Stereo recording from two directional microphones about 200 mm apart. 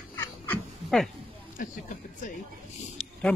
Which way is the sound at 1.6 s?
40° left (ahead or behind).